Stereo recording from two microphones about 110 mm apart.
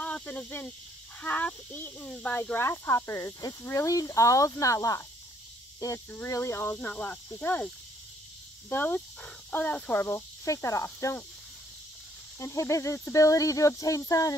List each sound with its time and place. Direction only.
0.0 s speech: 10° left (ahead or behind); by 11.1 s 25° left (ahead or behind)
12.4 s speech: 25° left (ahead or behind)